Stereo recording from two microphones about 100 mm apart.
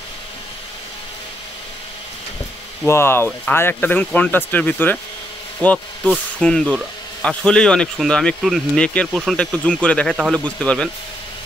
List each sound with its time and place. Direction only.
2.9 s speech: 25° left (ahead or behind); by 8.6 s centre (ahead or behind)
8.7 s speech: 10° left (ahead or behind)